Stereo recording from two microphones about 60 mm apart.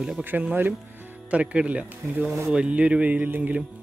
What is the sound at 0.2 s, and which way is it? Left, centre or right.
Speech, right.